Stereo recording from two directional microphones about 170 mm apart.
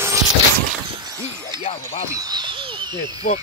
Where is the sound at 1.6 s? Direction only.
45° left (ahead or behind).